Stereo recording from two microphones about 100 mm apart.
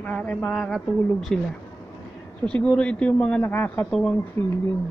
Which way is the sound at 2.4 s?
10° left (ahead or behind).